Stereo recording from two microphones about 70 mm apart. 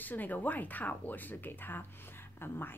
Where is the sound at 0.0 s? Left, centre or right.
Left.